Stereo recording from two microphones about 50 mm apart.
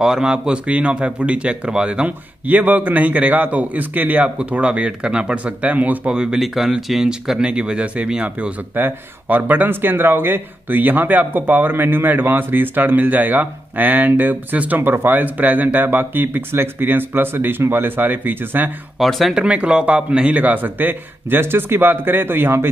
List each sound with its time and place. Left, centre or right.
0.0 s speech: centre
2.4 s speech: right
6.0 s speech: centre
8.7 s speech: right
18.9 s speech: centre
19.3 s speech: right